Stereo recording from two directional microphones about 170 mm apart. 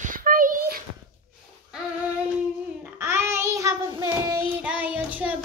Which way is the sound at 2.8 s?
15° right (ahead or behind).